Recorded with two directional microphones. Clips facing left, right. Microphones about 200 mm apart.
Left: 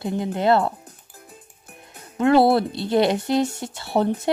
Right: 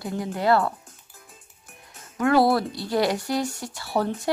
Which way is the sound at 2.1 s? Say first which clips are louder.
Left 3 dB; 25° left (ahead or behind).